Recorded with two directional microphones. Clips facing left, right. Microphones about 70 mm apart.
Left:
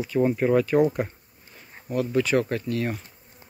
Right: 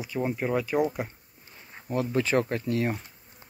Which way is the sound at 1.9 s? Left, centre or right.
Right.